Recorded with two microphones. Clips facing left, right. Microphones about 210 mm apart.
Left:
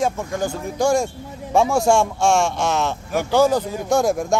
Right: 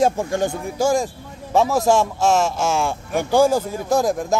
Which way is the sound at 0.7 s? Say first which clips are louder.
Left 1 dB; 5° right (ahead or behind).